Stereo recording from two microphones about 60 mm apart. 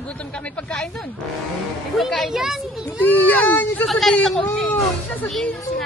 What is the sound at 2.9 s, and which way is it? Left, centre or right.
Speech, left.